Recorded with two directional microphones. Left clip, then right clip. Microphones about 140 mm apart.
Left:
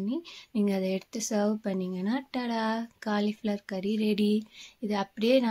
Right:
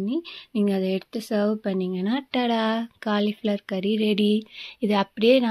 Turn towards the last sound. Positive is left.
turn(degrees=-30)  # may be behind; listen again after turning